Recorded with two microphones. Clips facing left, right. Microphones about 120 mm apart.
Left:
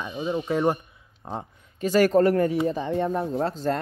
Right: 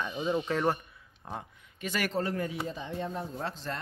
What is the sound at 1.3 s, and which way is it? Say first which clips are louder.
Speech: left 6 dB; 35° left (ahead or behind).